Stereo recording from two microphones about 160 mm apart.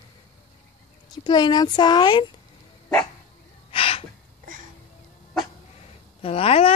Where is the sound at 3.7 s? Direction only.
35° left (ahead or behind).